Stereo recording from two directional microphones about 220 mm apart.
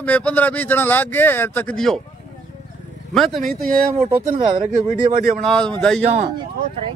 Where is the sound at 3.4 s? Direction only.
35° right (ahead or behind).